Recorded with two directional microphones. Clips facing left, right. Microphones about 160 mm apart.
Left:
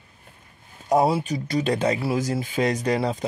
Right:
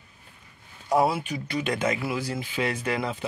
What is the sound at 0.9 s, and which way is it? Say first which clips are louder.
Speech: left 3 dB; 35° left (ahead or behind).